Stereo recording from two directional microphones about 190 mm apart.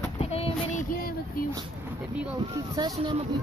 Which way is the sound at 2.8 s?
20° right (ahead or behind).